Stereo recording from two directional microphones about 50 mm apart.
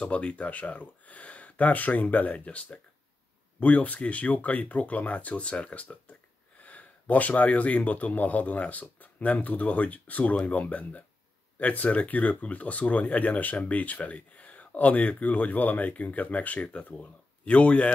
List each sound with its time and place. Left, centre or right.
0.0 s a man's voice: left